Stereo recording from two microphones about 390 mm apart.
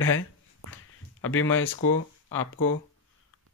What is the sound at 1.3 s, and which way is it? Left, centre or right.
Speech, left.